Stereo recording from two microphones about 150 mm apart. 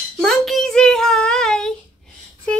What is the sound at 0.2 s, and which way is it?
Child singing, centre (ahead or behind).